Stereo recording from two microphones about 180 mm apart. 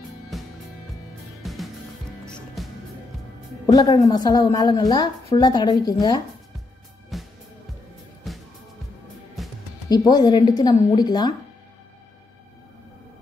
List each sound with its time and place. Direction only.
0.3 s music: centre (ahead or behind)
3.6 s a woman's voice: 20° left (ahead or behind)
7.1 s music: centre (ahead or behind)
9.8 s a woman's voice: 20° left (ahead or behind)